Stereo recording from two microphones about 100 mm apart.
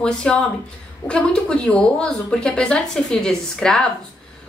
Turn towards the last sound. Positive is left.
turn(degrees=5)  # may be behind; listen again after turning